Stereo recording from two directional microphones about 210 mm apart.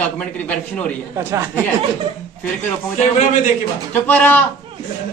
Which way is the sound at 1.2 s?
10° right (ahead or behind).